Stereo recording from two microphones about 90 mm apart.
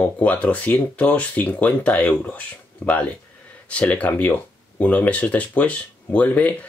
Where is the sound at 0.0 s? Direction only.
15° left (ahead or behind).